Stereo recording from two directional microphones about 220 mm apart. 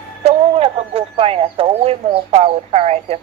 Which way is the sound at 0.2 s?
30° right (ahead or behind).